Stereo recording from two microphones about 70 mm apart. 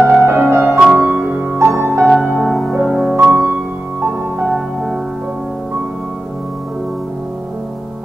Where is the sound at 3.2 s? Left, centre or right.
Centre.